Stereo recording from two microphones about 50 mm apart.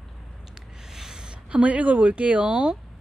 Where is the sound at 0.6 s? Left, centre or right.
Centre.